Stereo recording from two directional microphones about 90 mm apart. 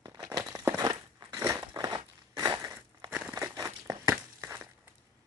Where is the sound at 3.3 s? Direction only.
40° right (ahead or behind).